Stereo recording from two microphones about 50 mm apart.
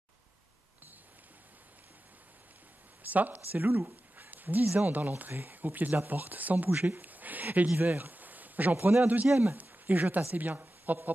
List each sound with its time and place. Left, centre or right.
3.0 s a woman's voice: right